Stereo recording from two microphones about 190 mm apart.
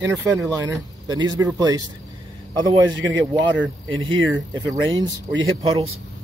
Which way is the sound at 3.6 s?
90° right.